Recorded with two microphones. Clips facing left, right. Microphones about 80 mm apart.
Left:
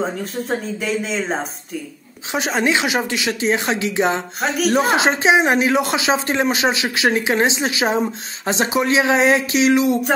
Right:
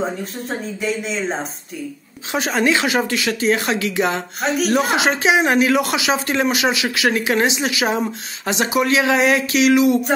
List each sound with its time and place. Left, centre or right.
0.2 s speech: centre
2.3 s speech: centre
4.4 s speech: centre
4.7 s speech: left